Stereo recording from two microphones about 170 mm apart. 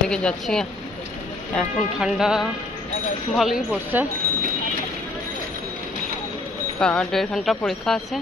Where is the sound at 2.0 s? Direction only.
5° right (ahead or behind).